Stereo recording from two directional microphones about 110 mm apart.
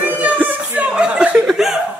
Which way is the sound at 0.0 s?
15° right (ahead or behind).